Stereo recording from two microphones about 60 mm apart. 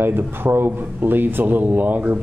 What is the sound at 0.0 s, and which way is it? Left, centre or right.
A man's voice, right.